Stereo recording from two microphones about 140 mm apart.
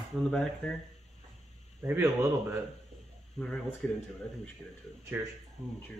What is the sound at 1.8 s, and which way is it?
Speech, 15° right (ahead or behind).